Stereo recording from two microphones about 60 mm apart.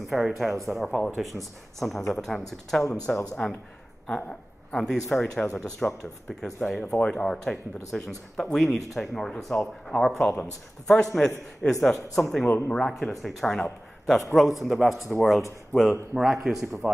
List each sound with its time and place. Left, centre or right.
0.1 s speech: centre
3.4 s speech: centre
12.4 s speech: left
12.7 s speech: centre
13.5 s speech: centre
14.6 s speech: centre